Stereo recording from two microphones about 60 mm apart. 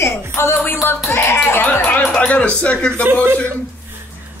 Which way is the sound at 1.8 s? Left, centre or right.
Left.